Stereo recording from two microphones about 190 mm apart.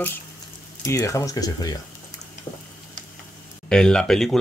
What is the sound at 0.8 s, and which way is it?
Speech, 15° left (ahead or behind).